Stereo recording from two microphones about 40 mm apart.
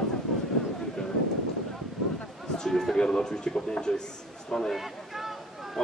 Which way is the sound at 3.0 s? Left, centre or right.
Centre.